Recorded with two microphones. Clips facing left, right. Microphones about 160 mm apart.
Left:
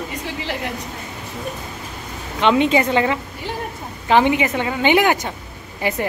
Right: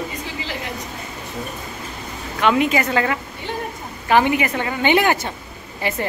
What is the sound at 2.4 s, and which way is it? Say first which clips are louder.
A woman's voice: left 2 dB; 25° left (ahead or behind).